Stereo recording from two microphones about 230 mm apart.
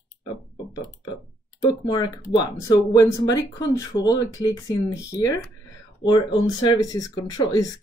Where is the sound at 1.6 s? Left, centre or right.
Centre.